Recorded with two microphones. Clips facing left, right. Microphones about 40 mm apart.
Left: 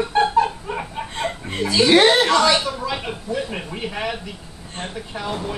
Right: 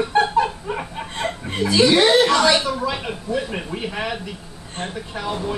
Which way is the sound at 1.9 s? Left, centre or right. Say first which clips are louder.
Left 4 dB; left.